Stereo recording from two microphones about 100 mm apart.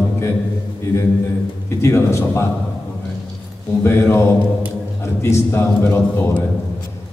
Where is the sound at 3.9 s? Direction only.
25° left (ahead or behind).